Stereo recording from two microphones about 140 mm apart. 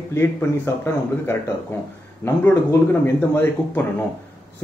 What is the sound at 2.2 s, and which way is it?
Speech, 15° left (ahead or behind).